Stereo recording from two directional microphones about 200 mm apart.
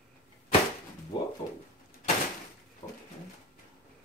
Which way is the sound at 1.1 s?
25° left (ahead or behind).